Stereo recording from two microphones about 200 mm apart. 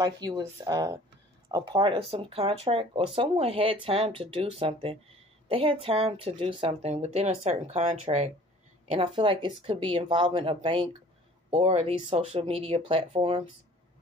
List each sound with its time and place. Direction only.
0.0 s speech: 20° right (ahead or behind)